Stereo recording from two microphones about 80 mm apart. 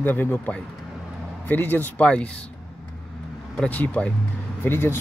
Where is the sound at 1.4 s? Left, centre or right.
Left.